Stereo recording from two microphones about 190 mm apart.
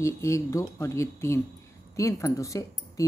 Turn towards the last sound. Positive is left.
turn(degrees=15)  # may be behind; listen again after turning